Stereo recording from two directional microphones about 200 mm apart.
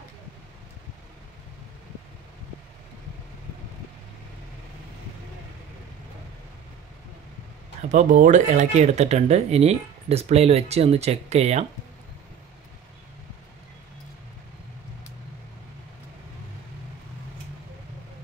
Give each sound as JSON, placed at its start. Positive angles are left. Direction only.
{"t": 7.9, "sound": "speech", "side_deg": -40}